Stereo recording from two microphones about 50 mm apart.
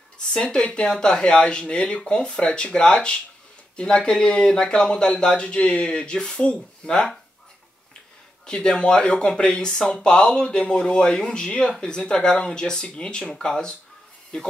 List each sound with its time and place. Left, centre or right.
0.2 s speech: centre
8.5 s speech: centre